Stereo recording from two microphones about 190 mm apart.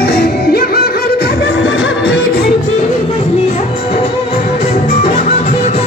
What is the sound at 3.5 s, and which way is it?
Music, 35° left (ahead or behind).